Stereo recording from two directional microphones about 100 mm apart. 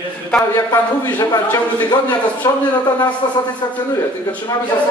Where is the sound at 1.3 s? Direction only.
45° left (ahead or behind).